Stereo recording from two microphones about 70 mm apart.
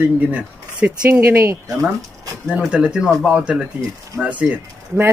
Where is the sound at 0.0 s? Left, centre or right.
Right.